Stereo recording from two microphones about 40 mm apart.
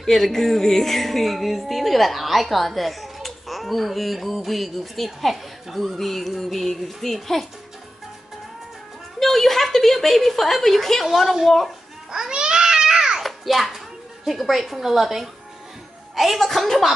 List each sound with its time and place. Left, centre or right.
0.0 s speech: centre
9.2 s speech: centre
11.1 s speech: centre
12.1 s babbling: centre
13.2 s music: centre
14.2 s a woman's voice: centre